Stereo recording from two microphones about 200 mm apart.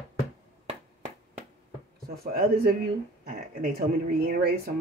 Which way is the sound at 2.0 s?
50° right (ahead or behind).